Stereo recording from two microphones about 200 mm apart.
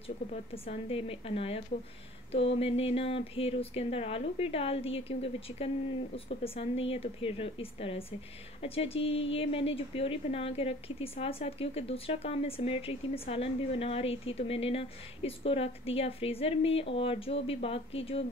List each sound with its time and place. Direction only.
0.7 s speech: 30° left (ahead or behind)